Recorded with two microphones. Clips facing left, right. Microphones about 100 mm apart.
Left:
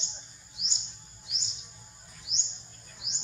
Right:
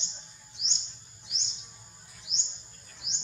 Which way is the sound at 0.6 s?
5° left (ahead or behind).